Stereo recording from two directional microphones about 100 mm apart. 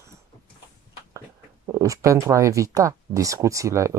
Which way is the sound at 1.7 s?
35° right (ahead or behind).